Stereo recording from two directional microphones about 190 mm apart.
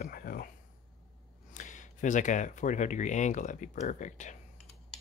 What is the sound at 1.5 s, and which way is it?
Speech, 40° left (ahead or behind).